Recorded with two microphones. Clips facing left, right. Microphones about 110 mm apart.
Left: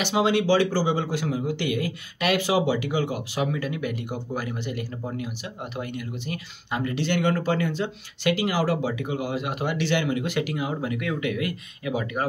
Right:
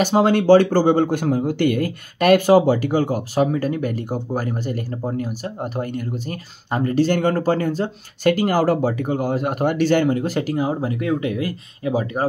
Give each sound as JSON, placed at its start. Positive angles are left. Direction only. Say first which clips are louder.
{"t": 0.0, "sound": "speech", "louder": "right 6 dB", "side_deg": -45}